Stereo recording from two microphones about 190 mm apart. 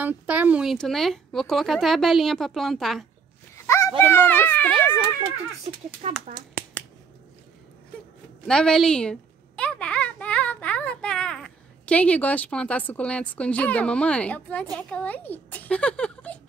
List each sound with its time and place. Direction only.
0.0 s speech: 10° right (ahead or behind)
3.5 s a sound: 15° left (ahead or behind)
4.0 s children playing: 10° left (ahead or behind)
6.0 s speech: 35° right (ahead or behind)
8.5 s a child's voice: 5° left (ahead or behind)